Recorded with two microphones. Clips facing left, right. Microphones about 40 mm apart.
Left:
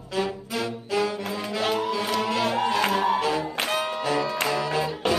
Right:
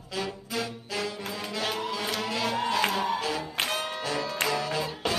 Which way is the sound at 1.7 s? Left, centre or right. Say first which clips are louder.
Left 6 dB; centre.